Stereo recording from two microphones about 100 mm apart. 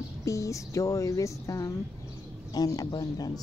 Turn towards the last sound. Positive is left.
turn(degrees=40)  # may be behind; listen again after turning